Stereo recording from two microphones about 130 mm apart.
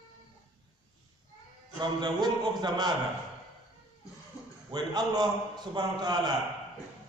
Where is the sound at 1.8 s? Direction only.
35° right (ahead or behind).